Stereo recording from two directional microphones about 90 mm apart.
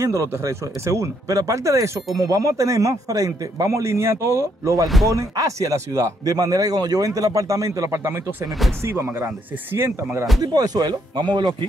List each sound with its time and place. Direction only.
0.0 s speech: 35° right (ahead or behind)
4.8 s speech: centre (ahead or behind)
5.1 s speech: 40° right (ahead or behind)
8.5 s speech: centre (ahead or behind)
8.8 s speech: 30° right (ahead or behind)
10.4 s speech: 45° right (ahead or behind)